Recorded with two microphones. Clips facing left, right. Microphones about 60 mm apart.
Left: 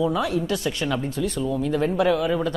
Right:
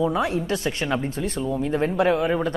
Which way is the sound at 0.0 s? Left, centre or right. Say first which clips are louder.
Even; right.